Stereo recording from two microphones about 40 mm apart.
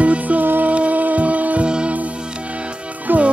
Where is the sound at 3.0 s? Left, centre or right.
Right.